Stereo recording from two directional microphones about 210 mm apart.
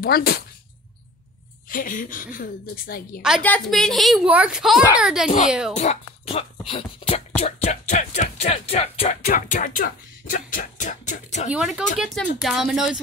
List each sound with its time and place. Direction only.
0.0 s speech: 45° left (ahead or behind)
1.7 s music: 40° left (ahead or behind)
3.2 s a woman's voice: centre (ahead or behind)
5.8 s speech: 30° left (ahead or behind)
6.7 s music: 30° left (ahead or behind)
11.5 s a woman's voice: 5° right (ahead or behind)